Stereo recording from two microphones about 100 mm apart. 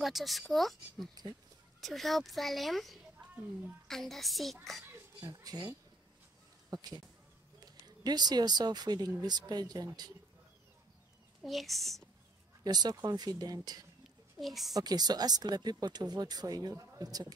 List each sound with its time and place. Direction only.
0.0 s speech: centre (ahead or behind)
4.8 s a sound: 35° right (ahead or behind)
6.7 s speech: 40° right (ahead or behind)
11.4 s speech: centre (ahead or behind)
12.6 s speech: 40° right (ahead or behind)
14.4 s speech: centre (ahead or behind)
14.7 s speech: 40° right (ahead or behind)